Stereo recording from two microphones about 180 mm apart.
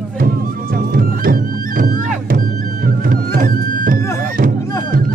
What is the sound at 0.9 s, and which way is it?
Music, 55° right (ahead or behind).